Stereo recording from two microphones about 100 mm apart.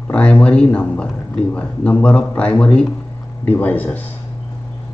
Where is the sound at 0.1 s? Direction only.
10° left (ahead or behind).